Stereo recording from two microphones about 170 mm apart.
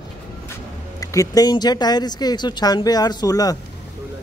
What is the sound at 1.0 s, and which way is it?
Speech, 20° left (ahead or behind).